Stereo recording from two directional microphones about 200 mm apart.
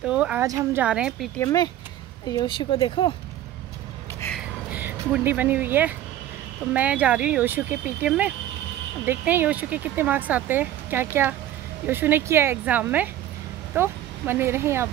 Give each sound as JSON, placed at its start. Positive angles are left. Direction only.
{"t": 0.0, "sound": "a woman's voice", "side_deg": -5}
{"t": 1.4, "sound": "speech", "side_deg": 15}
{"t": 4.6, "sound": "speech", "side_deg": -5}